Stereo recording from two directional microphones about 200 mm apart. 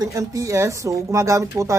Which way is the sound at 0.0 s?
15° right (ahead or behind).